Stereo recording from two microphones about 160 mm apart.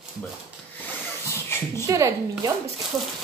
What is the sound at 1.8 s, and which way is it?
Speech, 20° right (ahead or behind).